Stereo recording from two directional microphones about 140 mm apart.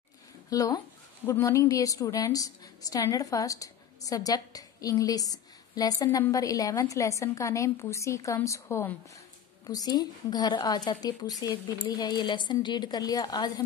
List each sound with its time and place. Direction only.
0.5 s a woman's voice: 25° left (ahead or behind)